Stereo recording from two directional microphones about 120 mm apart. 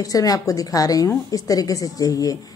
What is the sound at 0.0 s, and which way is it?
Speech, 30° left (ahead or behind).